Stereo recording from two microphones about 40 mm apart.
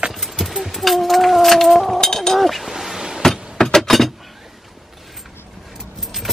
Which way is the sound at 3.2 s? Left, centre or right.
Centre.